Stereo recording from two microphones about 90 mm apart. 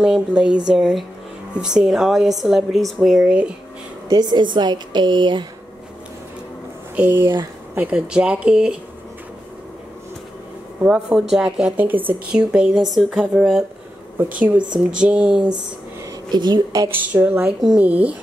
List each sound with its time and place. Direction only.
0.0 s a woman's voice: 10° right (ahead or behind)
4.1 s a woman's voice: 55° right (ahead or behind)
7.0 s a woman's voice: 25° right (ahead or behind)
10.8 s speech: 10° right (ahead or behind)
11.7 s a woman's voice: 20° right (ahead or behind)
12.1 s speech: 10° right (ahead or behind)
13.4 s a woman's voice: centre (ahead or behind)
14.1 s a woman's voice: 20° right (ahead or behind)
16.3 s a woman's voice: 55° right (ahead or behind)
16.9 s a woman's voice: 20° right (ahead or behind)